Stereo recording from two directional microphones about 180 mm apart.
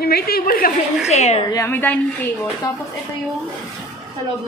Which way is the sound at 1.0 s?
40° left (ahead or behind).